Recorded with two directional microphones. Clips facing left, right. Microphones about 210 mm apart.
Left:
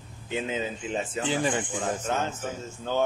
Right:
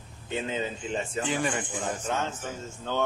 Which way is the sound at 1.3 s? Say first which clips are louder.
Left 3 dB; 30° left (ahead or behind).